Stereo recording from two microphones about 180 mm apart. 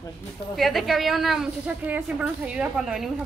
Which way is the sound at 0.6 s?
Centre (ahead or behind).